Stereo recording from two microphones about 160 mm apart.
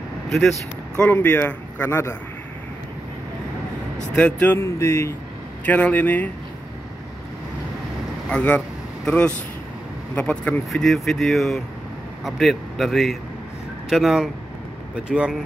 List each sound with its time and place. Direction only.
0.3 s speech: centre (ahead or behind)
4.1 s speech: 10° left (ahead or behind)
8.3 s speech: 10° left (ahead or behind)